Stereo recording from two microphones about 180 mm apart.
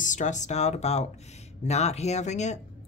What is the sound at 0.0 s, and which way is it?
Speech, 45° left (ahead or behind).